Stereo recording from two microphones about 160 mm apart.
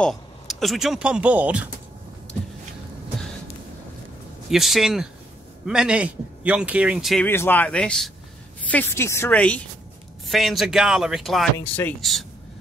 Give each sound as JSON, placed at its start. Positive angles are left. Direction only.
{"t": 0.0, "sound": "speech", "side_deg": 0}
{"t": 4.5, "sound": "speech", "side_deg": 0}
{"t": 7.2, "sound": "speech", "side_deg": 15}